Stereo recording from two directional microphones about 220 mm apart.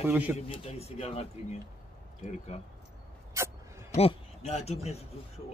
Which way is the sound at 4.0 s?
30° left (ahead or behind).